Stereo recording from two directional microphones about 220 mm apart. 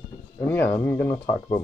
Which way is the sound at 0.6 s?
10° left (ahead or behind).